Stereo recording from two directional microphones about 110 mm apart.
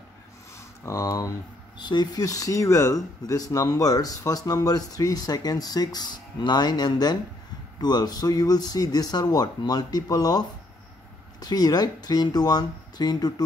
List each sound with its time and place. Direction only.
0.8 s speech: 30° left (ahead or behind)